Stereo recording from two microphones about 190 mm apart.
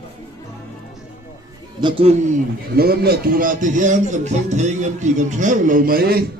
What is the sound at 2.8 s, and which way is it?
Speech, 55° right (ahead or behind).